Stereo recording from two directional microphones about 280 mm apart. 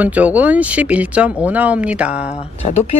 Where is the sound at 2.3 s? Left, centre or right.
Left.